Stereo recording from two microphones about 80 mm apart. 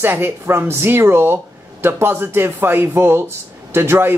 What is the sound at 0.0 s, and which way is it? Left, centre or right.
A man's voice, right.